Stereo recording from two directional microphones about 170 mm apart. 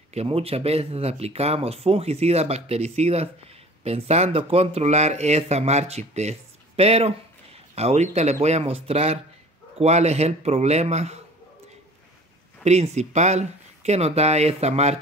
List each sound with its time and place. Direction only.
0.1 s speech: 35° right (ahead or behind)
12.6 s speech: 40° right (ahead or behind)